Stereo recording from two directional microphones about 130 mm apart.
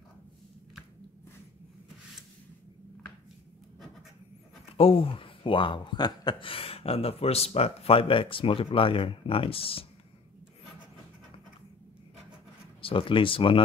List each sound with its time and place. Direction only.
4.7 s speech: 45° left (ahead or behind)
12.8 s speech: 40° left (ahead or behind)